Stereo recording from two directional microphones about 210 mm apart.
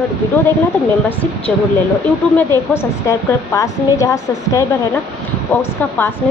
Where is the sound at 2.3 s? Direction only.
10° left (ahead or behind).